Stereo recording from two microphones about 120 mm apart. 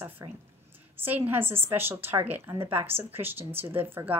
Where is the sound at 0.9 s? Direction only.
15° right (ahead or behind).